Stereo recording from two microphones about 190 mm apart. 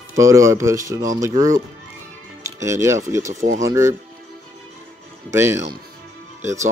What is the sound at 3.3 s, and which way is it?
Speech, 35° right (ahead or behind).